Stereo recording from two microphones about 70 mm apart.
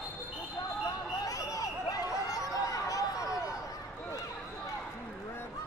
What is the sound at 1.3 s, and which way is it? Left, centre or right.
Chatter, left.